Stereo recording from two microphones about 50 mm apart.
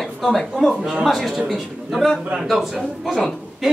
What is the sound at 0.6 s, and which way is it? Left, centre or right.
A man's voice, centre.